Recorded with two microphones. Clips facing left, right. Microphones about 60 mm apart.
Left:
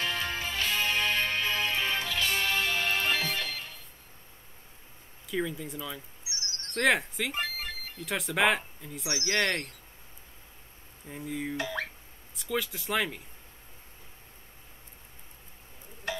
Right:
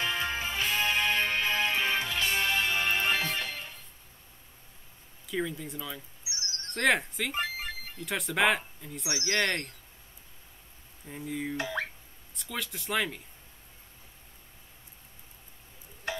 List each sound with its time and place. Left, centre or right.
0.0 s music: centre
5.3 s speech: centre
6.2 s a sound: right
6.7 s speech: centre
7.3 s music: centre
8.0 s speech: centre
11.1 s speech: centre
11.5 s plop: right
12.4 s speech: centre